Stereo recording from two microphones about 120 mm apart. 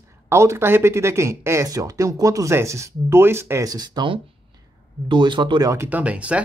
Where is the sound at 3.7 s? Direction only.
35° right (ahead or behind).